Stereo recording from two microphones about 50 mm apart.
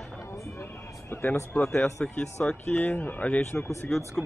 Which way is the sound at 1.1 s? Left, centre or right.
Left.